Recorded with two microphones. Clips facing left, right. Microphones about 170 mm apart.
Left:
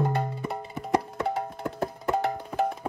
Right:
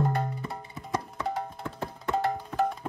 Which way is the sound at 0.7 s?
65° left (ahead or behind).